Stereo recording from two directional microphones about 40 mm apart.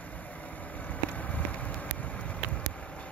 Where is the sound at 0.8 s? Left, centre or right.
Left.